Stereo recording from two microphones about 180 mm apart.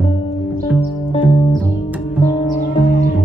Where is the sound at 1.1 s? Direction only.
25° left (ahead or behind).